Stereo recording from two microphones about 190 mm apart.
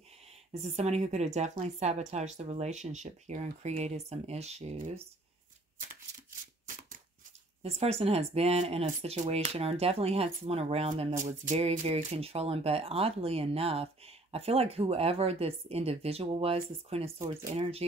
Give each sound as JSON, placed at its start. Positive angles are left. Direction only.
{"t": 0.7, "sound": "speech", "side_deg": -35}
{"t": 7.6, "sound": "speech", "side_deg": -30}